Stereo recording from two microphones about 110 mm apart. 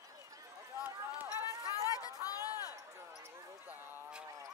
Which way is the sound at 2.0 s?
35° left (ahead or behind).